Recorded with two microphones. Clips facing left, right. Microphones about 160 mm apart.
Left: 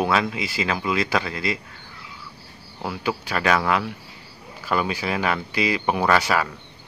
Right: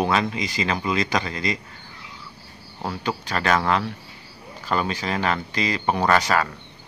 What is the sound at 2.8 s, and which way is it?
Speech, 5° left (ahead or behind).